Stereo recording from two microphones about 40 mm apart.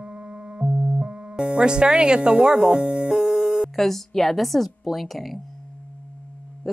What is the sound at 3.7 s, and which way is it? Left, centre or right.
A woman's voice, centre.